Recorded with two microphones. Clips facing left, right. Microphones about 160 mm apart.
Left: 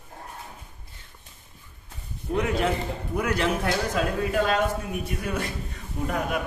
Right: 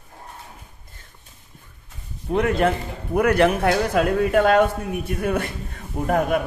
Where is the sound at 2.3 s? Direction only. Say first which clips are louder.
Right 5 dB; 55° right (ahead or behind).